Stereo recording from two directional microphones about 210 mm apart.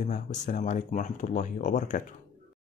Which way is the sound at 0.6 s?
35° left (ahead or behind).